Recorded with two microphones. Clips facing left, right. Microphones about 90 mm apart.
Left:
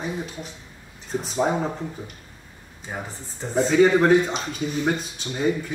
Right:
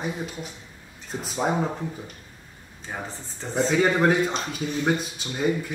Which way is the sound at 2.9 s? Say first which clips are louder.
Left 1 dB; 15° left (ahead or behind).